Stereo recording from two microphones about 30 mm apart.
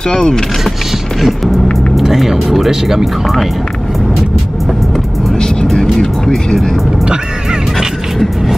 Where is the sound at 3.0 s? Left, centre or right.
Centre.